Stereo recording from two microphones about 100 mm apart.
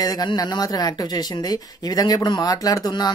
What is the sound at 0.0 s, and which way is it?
Speech, 40° left (ahead or behind).